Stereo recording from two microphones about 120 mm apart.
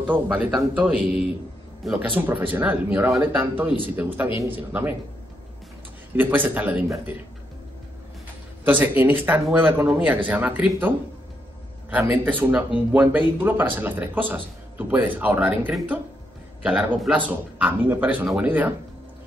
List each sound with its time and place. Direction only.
0.0 s speech: 15° right (ahead or behind)
6.1 s speech: 15° right (ahead or behind)
8.6 s speech: 15° right (ahead or behind)